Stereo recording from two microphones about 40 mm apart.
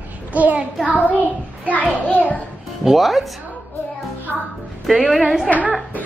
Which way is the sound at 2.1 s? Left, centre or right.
Left.